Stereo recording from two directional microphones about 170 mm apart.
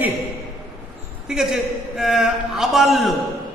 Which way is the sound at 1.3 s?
Centre (ahead or behind).